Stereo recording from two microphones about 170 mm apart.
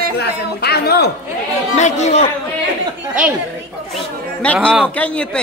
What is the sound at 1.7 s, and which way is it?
Speech, 45° left (ahead or behind).